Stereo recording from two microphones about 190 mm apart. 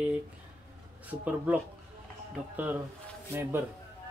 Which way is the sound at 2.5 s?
10° right (ahead or behind).